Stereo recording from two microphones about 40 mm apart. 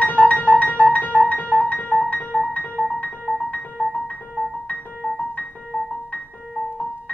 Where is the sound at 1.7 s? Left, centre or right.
Left.